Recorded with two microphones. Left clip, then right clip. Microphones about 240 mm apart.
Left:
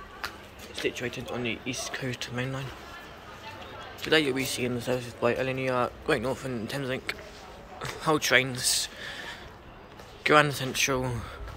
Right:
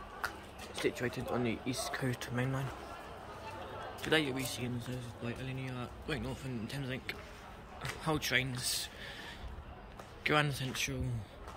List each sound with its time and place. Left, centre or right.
0.8 s speech: right
4.1 s a man's voice: centre